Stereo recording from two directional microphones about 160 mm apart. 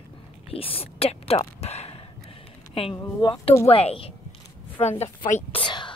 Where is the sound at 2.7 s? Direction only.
35° left (ahead or behind).